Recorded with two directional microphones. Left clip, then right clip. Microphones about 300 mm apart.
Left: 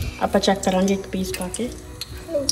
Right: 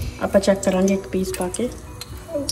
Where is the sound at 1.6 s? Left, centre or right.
Centre.